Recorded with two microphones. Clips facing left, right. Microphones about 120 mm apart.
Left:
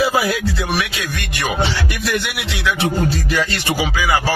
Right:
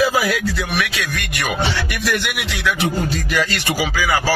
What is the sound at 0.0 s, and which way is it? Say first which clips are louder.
Speech: even; 30° left (ahead or behind).